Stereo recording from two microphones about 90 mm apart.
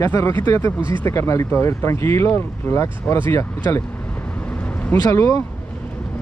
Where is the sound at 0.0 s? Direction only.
30° left (ahead or behind).